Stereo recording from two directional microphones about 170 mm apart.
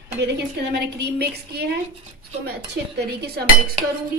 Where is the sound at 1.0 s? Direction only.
70° right (ahead or behind).